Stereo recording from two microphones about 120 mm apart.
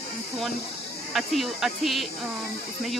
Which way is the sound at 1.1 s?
Centre (ahead or behind).